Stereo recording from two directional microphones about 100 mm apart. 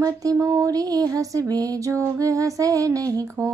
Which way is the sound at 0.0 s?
35° right (ahead or behind).